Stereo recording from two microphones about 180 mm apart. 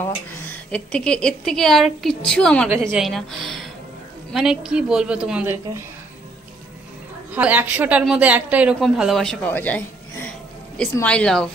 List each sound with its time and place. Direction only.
0.0 s a woman's voice: 10° left (ahead or behind); by 5.6 s 10° right (ahead or behind)
7.3 s a woman's voice: 10° right (ahead or behind)